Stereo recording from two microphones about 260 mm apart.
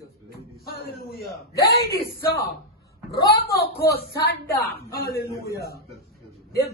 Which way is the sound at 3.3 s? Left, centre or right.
Left.